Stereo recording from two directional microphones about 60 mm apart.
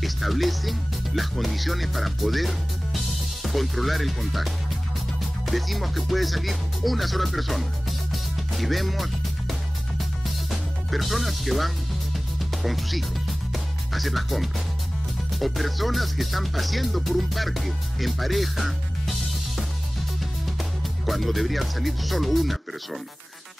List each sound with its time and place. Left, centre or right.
0.0 s speech: centre
8.1 s music: centre
21.0 s speech: centre